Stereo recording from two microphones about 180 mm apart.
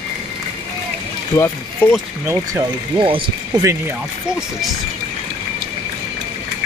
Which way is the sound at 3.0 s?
25° right (ahead or behind).